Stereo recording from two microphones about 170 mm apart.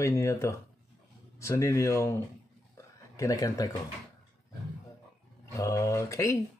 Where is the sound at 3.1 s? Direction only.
20° left (ahead or behind).